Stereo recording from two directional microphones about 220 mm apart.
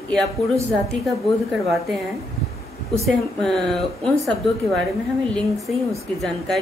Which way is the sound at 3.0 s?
Centre (ahead or behind).